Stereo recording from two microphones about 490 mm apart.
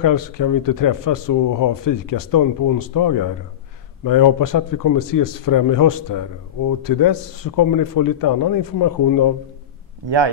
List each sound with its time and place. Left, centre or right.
0.0 s a man's voice: left
10.0 s speech: right